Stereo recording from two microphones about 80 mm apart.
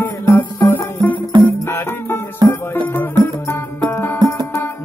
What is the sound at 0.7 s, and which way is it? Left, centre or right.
Music, left.